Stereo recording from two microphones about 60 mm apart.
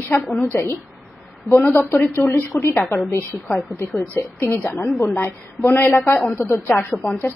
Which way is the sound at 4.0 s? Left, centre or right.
Left.